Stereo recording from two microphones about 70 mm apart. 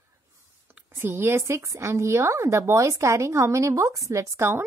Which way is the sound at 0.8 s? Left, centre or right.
Right.